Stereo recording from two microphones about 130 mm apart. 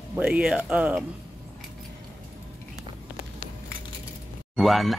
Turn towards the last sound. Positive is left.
turn(degrees=0)  # may be behind; listen again after turning